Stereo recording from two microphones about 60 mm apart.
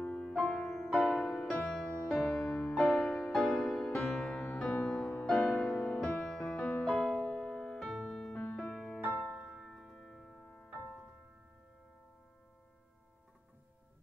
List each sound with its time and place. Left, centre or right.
0.0 s music: centre
2.5 s music: left
2.8 s music: centre
4.3 s music: centre
5.8 s music: centre
8.3 s music: left
8.5 s music: centre